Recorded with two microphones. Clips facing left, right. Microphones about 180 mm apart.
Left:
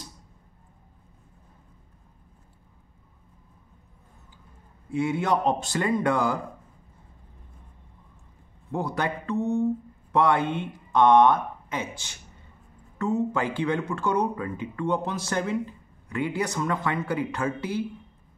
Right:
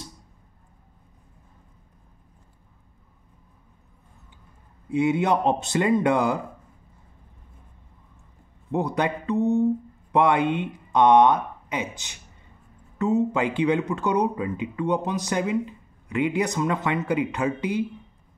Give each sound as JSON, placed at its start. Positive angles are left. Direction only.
{"t": 4.8, "sound": "speech", "side_deg": -20}
{"t": 8.7, "sound": "speech", "side_deg": -20}